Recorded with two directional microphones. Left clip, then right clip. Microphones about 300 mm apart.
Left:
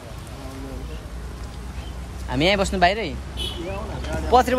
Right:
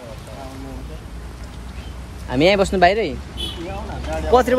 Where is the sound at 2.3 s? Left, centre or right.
Centre.